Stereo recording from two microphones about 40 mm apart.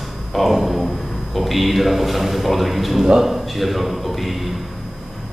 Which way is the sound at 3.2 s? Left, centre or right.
Centre.